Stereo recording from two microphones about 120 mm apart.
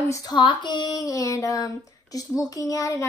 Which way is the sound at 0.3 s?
40° left (ahead or behind).